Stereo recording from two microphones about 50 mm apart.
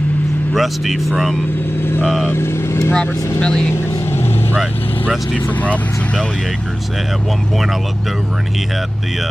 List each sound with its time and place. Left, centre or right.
0.5 s speech: centre
2.2 s speech: left
2.9 s speech: left
4.0 s vehicle: left